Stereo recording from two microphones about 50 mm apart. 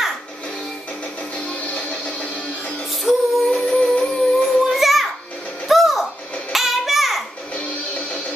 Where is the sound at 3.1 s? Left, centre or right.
Centre.